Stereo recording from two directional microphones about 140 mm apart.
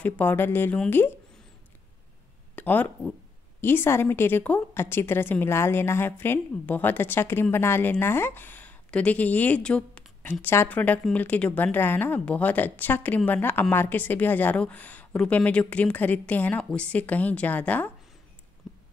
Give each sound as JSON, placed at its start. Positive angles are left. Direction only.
{"t": 0.0, "sound": "a woman's voice", "side_deg": 10}
{"t": 2.5, "sound": "a woman's voice", "side_deg": 10}
{"t": 18.6, "sound": "a sound", "side_deg": 0}